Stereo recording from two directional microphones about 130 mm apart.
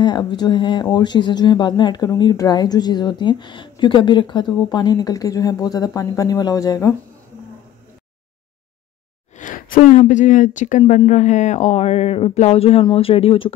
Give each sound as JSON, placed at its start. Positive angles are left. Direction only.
{"t": 0.0, "sound": "speech", "side_deg": 35}
{"t": 9.4, "sound": "speech", "side_deg": 85}
{"t": 11.0, "sound": "speech", "side_deg": 65}